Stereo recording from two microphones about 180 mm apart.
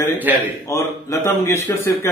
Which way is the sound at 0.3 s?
10° right (ahead or behind).